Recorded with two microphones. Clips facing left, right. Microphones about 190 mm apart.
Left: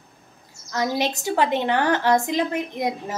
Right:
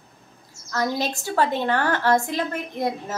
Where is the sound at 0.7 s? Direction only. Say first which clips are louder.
Left 1 dB; 15° left (ahead or behind).